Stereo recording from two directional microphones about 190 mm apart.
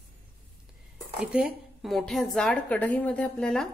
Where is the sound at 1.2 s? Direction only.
5° right (ahead or behind).